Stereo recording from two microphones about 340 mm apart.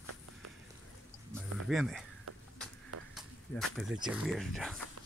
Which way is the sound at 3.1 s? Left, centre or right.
Centre.